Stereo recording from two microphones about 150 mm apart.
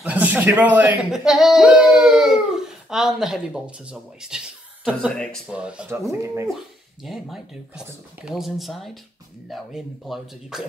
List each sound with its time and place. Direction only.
0.0 s speech: 10° right (ahead or behind)
4.8 s speech: 5° left (ahead or behind)
5.5 s speech: 5° right (ahead or behind)
6.0 s speech: 20° right (ahead or behind)
6.5 s speech: centre (ahead or behind)